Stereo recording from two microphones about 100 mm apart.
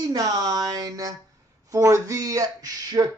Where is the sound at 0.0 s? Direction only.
40° right (ahead or behind).